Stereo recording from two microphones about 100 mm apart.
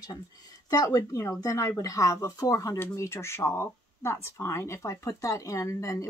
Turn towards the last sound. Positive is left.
turn(degrees=30)  # may be behind; listen again after turning